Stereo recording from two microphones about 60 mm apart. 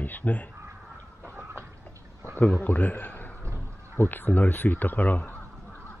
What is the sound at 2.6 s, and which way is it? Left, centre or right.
A man's voice, left.